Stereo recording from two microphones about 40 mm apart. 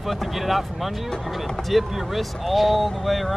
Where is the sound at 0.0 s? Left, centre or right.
Centre.